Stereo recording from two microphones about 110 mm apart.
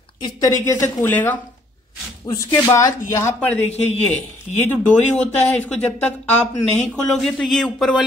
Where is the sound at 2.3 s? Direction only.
40° left (ahead or behind).